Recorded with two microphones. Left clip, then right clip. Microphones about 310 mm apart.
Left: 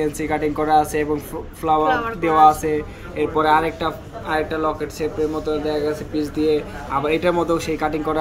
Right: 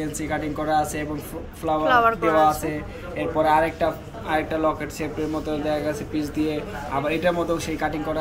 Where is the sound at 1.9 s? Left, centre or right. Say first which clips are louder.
Right 3 dB; centre.